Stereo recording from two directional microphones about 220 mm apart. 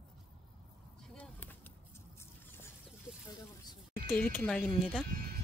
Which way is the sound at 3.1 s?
5° right (ahead or behind).